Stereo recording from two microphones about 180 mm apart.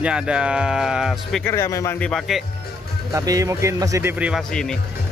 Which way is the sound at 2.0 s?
5° left (ahead or behind).